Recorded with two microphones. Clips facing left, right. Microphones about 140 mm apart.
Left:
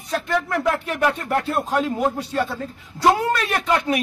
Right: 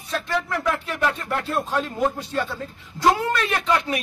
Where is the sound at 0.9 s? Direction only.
20° left (ahead or behind).